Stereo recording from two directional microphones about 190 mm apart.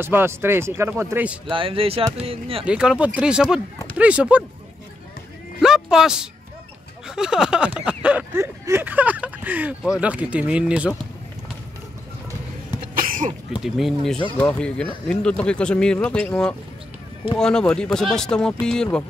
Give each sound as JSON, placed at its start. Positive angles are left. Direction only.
{"t": 0.0, "sound": "speech", "side_deg": -10}
{"t": 1.5, "sound": "speech", "side_deg": -30}
{"t": 2.6, "sound": "speech", "side_deg": -5}
{"t": 5.6, "sound": "speech", "side_deg": -5}
{"t": 12.9, "sound": "cough", "side_deg": -45}
{"t": 13.6, "sound": "speech", "side_deg": 0}